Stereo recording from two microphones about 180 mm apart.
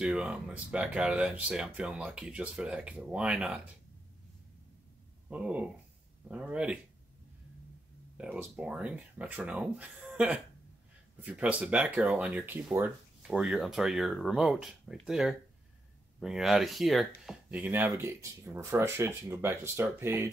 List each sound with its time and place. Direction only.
0.0 s speech: 5° right (ahead or behind)
5.3 s speech: 5° right (ahead or behind)
8.2 s speech: 5° right (ahead or behind)